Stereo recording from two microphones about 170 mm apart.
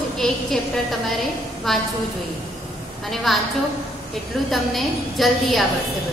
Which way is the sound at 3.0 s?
Centre (ahead or behind).